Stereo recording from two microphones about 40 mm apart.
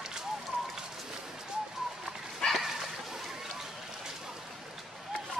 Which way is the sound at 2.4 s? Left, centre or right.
Centre.